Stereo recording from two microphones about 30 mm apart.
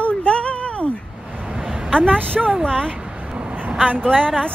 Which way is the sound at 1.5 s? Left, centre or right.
Right.